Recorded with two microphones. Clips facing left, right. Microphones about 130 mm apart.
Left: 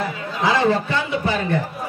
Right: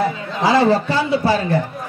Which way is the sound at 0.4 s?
35° right (ahead or behind).